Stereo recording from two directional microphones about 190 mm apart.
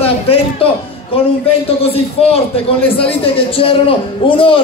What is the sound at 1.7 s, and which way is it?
A man's voice, 30° left (ahead or behind).